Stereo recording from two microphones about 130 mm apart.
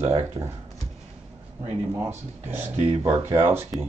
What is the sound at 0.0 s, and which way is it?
Speech, 50° right (ahead or behind).